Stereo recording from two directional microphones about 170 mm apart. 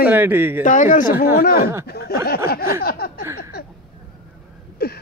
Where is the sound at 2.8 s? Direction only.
65° left (ahead or behind).